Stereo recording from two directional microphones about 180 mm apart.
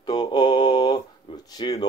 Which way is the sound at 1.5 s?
25° left (ahead or behind).